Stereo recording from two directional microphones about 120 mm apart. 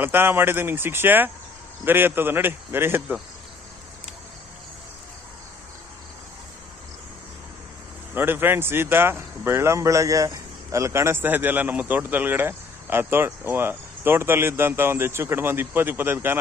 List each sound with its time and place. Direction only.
0.0 s a man's voice: 20° right (ahead or behind)
8.1 s speech: 15° right (ahead or behind)